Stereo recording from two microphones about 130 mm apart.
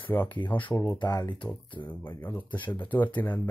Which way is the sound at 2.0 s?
15° left (ahead or behind).